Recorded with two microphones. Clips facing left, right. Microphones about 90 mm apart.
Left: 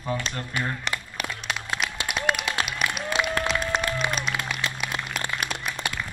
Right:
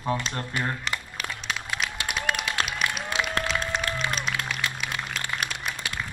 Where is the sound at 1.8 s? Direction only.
5° left (ahead or behind).